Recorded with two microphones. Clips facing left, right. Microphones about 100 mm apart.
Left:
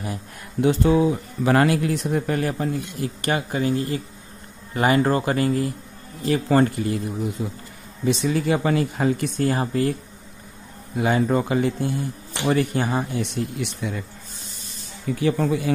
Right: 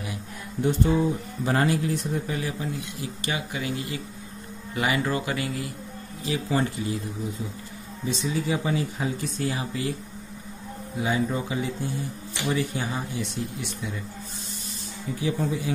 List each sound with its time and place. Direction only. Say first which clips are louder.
0.6 s speech: left 5 dB; 90° left; by 5.7 s 45° left (ahead or behind)
6.2 s speech: left 7 dB; 55° left (ahead or behind)
8.0 s speech: left 6 dB; 65° left (ahead or behind); by 9.9 s 50° left (ahead or behind)
11.0 s speech: left 6 dB; 60° left (ahead or behind)
15.1 s speech: left 6 dB; 75° left (ahead or behind)